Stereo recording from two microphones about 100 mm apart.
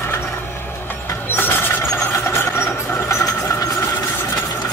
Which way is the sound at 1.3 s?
20° left (ahead or behind).